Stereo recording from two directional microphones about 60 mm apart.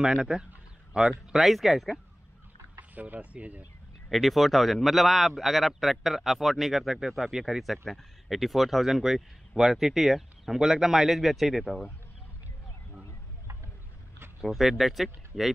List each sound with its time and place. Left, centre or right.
0.0 s a man's voice: centre
2.9 s speech: right
4.1 s a man's voice: centre
14.4 s a man's voice: centre